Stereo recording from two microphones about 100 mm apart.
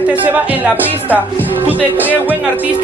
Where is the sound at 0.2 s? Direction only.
15° right (ahead or behind).